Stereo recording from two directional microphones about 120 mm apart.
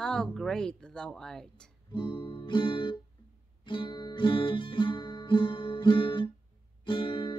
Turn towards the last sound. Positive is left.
turn(degrees=45)  # may be behind; listen again after turning